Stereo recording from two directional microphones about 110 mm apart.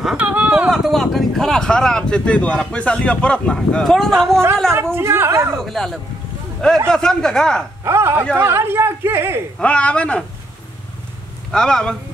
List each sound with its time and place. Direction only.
0.0 s a sound: 10° right (ahead or behind)
0.7 s speech: centre (ahead or behind)
4.9 s speech: 20° right (ahead or behind)
5.6 s speech: 5° left (ahead or behind)
7.8 s speech: 25° right (ahead or behind)
9.6 s speech: 10° left (ahead or behind)
11.5 s speech: 5° left (ahead or behind)